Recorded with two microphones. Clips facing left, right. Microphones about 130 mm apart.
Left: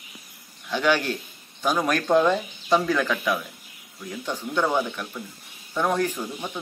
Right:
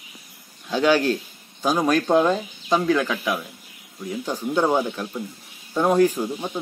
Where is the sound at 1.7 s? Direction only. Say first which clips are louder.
Right 5 dB; 25° right (ahead or behind).